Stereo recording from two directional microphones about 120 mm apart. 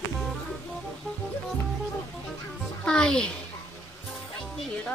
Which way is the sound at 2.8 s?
5° left (ahead or behind).